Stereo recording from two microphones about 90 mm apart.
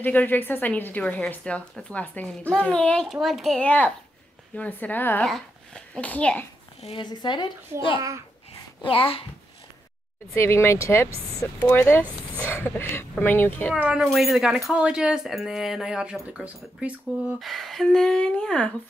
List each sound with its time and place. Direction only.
0.0 s a woman's voice: 20° left (ahead or behind)
3.1 s speech: centre (ahead or behind)
3.6 s a woman's voice: 15° left (ahead or behind)
5.2 s a child's voice: 10° left (ahead or behind)
7.1 s speech: 55° left (ahead or behind)
8.8 s a child's voice: 80° left
10.3 s a woman's voice: 30° left (ahead or behind)
13.7 s speech: 15° right (ahead or behind)
14.0 s speech: 5° right (ahead or behind)
17.4 s speech: centre (ahead or behind)